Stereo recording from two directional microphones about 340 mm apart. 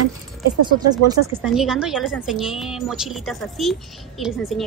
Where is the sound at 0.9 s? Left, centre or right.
Centre.